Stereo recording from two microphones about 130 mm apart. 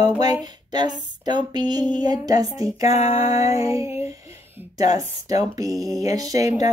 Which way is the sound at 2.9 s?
50° left (ahead or behind).